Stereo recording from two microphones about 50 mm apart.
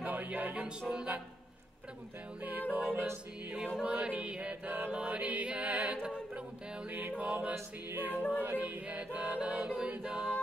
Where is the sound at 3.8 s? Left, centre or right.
Right.